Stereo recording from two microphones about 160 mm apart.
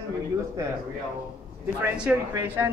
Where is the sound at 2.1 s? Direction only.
10° right (ahead or behind).